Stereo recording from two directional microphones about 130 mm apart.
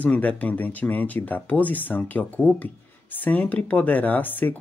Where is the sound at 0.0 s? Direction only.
10° left (ahead or behind).